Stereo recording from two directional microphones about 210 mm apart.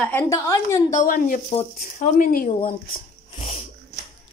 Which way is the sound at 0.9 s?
40° left (ahead or behind).